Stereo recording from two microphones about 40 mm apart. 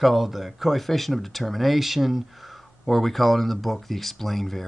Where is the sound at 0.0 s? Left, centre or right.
Centre.